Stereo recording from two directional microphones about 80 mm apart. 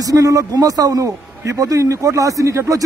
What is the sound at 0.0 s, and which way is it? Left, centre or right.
A man's voice, right.